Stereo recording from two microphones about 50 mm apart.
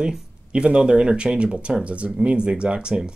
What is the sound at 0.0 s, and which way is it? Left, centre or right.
Speech, centre.